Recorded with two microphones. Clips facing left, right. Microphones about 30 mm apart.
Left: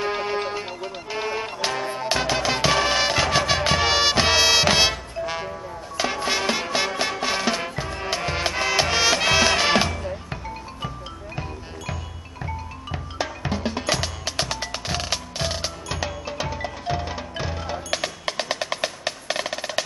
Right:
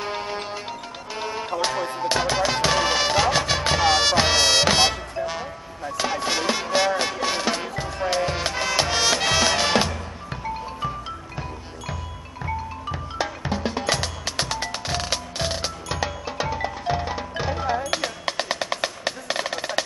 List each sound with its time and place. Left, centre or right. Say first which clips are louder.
0.0 s music: left 4 dB; centre
12.9 s music: even; centre
17.9 s percussion: right 1 dB; centre